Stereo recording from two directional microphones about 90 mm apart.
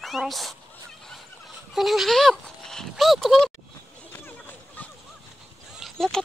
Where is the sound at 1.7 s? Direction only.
Centre (ahead or behind).